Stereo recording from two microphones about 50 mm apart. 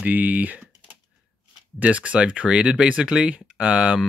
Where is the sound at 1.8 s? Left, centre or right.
Right.